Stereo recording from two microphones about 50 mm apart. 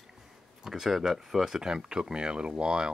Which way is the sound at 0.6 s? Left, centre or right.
Centre.